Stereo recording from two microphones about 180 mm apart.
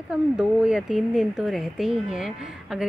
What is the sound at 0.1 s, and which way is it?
A woman's voice, 5° right (ahead or behind).